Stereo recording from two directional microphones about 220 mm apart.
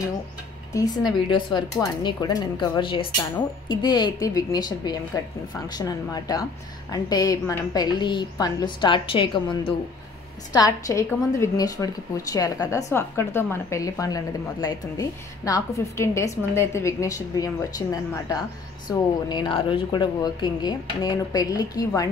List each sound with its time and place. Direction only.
0.7 s a woman's voice: 15° left (ahead or behind)